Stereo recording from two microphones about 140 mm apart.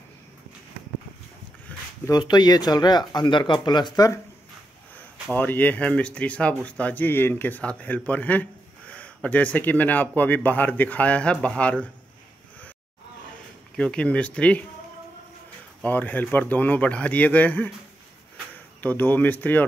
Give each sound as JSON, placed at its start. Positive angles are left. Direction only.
{"t": 2.0, "sound": "speech", "side_deg": 30}
{"t": 5.3, "sound": "speech", "side_deg": 10}
{"t": 13.7, "sound": "speech", "side_deg": 5}
{"t": 15.8, "sound": "speech", "side_deg": 10}
{"t": 18.8, "sound": "speech", "side_deg": 10}